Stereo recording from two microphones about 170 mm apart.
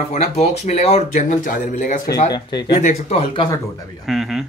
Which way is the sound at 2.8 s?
40° left (ahead or behind).